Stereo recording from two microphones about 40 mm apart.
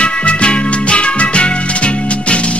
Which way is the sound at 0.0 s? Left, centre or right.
Left.